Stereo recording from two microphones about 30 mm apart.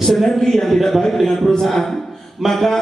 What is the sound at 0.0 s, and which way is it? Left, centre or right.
A man's voice, centre.